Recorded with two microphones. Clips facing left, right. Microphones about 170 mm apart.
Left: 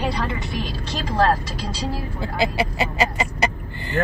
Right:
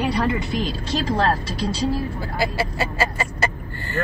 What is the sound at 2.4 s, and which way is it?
Speech, 20° left (ahead or behind).